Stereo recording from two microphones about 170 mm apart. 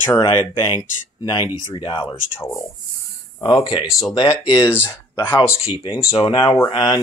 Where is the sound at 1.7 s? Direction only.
25° left (ahead or behind).